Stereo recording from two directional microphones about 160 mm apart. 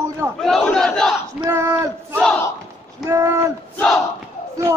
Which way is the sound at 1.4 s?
20° right (ahead or behind).